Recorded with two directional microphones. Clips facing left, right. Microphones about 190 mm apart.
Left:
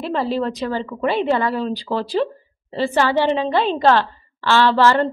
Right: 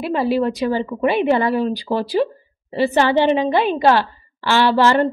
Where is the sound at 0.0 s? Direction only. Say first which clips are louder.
Right 3 dB; 10° right (ahead or behind).